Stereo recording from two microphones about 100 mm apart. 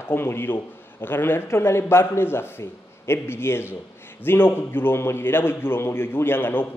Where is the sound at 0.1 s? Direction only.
25° left (ahead or behind).